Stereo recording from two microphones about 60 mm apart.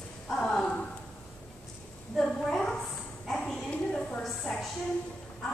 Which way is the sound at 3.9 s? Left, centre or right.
Centre.